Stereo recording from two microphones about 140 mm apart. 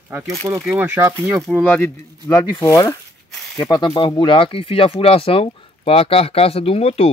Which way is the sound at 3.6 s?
30° left (ahead or behind).